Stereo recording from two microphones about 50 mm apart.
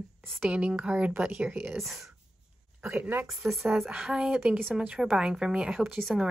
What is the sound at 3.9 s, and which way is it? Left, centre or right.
Speech, centre.